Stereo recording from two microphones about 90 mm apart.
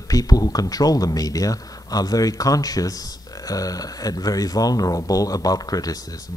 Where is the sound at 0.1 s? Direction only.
45° left (ahead or behind).